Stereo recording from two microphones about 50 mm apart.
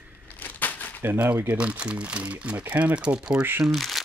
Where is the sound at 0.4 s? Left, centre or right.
Left.